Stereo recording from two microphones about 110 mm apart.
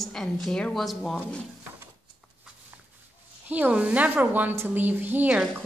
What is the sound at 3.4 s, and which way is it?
A woman's voice, 15° right (ahead or behind).